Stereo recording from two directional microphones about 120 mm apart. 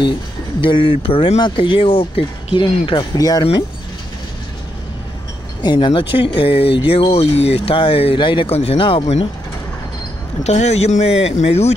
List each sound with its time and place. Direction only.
0.6 s speech: 45° left (ahead or behind)
5.6 s speech: 40° left (ahead or behind)
10.4 s speech: 65° left (ahead or behind)